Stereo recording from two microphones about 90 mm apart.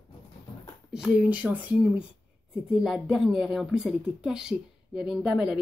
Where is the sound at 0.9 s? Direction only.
10° right (ahead or behind).